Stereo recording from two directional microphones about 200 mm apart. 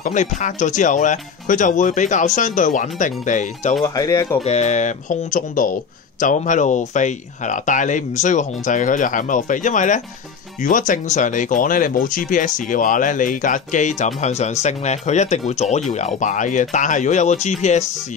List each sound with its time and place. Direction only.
0.0 s speech: 35° left (ahead or behind)
3.8 s speech: 15° left (ahead or behind)
4.4 s speech: 35° left (ahead or behind)